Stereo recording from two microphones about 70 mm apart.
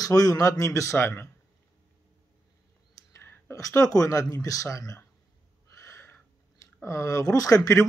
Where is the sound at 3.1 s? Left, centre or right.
Left.